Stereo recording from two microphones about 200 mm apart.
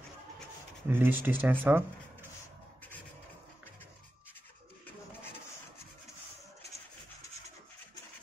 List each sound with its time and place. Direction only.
0.8 s speech: 10° right (ahead or behind)